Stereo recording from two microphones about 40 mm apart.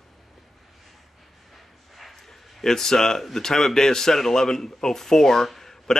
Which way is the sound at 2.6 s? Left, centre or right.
Centre.